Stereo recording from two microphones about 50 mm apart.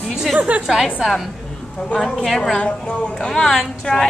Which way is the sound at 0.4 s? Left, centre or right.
Right.